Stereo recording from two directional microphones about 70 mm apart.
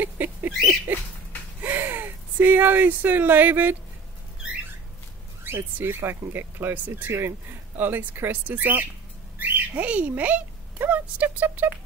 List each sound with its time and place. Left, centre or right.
0.0 s bird: right
1.6 s speech: right
5.4 s speech: right